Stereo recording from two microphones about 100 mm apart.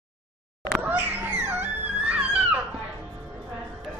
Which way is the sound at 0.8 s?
20° right (ahead or behind).